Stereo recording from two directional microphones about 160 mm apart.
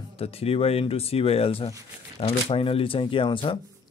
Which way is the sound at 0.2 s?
40° left (ahead or behind).